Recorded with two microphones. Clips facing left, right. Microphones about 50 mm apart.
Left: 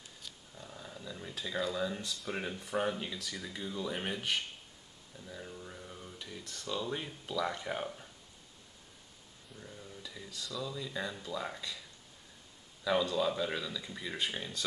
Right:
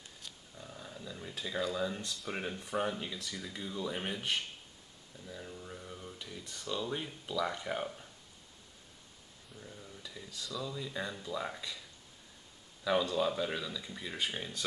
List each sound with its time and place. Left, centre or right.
0.2 s a sound: centre
2.0 s speech: centre
5.2 s speech: centre
6.4 s speech: centre
6.8 s speech: centre
9.5 s speech: centre
12.8 s speech: centre